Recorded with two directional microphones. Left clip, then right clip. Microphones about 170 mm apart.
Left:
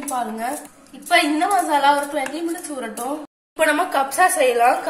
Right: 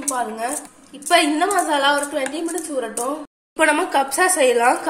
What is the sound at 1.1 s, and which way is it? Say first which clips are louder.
Speech: even; 25° right (ahead or behind).